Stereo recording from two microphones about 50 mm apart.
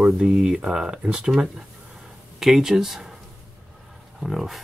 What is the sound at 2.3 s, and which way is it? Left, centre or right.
Speech, centre.